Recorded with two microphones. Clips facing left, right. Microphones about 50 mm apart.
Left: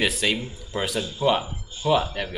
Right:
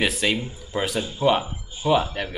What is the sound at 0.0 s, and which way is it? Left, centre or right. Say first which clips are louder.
Speech: right 1 dB; centre.